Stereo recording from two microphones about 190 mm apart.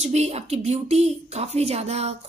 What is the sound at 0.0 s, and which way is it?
A woman's voice, 35° right (ahead or behind).